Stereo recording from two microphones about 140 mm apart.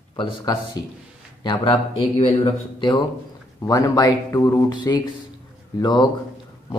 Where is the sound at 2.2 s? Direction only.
35° left (ahead or behind).